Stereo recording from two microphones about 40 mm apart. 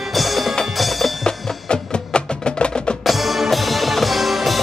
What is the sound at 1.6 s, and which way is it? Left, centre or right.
Music, left.